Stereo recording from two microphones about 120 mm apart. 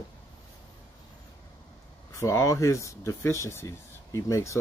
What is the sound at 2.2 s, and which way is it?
Speech, 25° left (ahead or behind).